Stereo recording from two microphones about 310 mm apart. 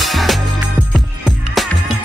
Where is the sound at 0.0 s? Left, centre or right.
Centre.